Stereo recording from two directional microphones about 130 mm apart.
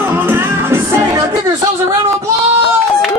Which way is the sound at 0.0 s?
15° right (ahead or behind).